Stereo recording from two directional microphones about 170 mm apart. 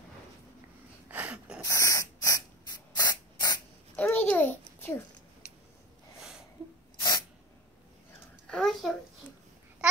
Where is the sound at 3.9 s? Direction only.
10° left (ahead or behind).